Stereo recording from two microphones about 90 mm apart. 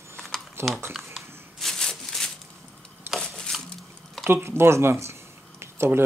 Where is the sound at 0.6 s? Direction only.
30° right (ahead or behind).